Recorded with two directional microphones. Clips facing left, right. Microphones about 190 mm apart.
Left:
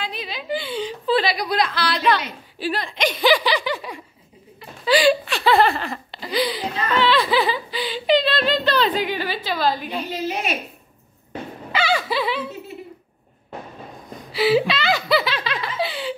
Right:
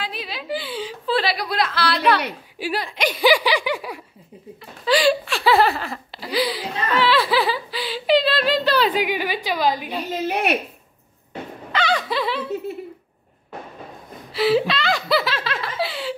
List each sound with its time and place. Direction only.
0.0 s chuckle: 5° right (ahead or behind)
2.6 s speech: 10° right (ahead or behind)
4.8 s speech: centre (ahead or behind); by 9.8 s 15° right (ahead or behind)
10.2 s speech: 60° right (ahead or behind)
11.7 s a sound: 5° left (ahead or behind)
14.3 s laughter: centre (ahead or behind)